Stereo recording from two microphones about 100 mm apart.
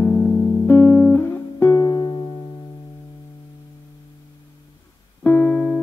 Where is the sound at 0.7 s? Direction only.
20° left (ahead or behind); by 2.2 s 35° left (ahead or behind).